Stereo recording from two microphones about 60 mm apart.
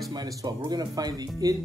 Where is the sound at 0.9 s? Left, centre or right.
Right.